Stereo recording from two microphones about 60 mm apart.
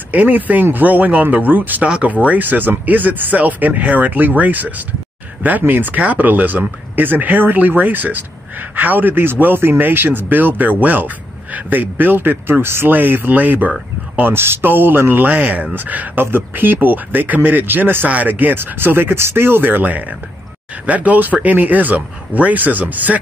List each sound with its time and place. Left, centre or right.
0.1 s speech: right